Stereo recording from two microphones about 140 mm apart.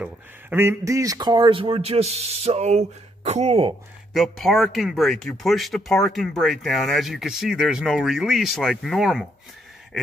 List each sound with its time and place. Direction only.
0.0 s speech: 15° right (ahead or behind); by 3.7 s 45° right (ahead or behind)
4.1 s speech: centre (ahead or behind)